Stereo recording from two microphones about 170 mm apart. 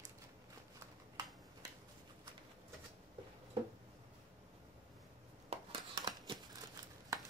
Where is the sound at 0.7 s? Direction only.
25° right (ahead or behind).